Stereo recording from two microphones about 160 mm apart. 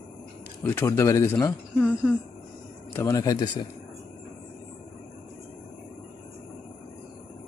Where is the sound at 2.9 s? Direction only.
15° left (ahead or behind).